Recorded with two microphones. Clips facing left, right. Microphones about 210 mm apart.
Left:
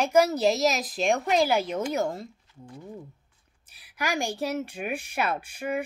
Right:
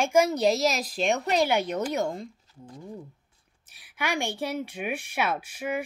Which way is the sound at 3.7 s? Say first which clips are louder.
Even; centre (ahead or behind).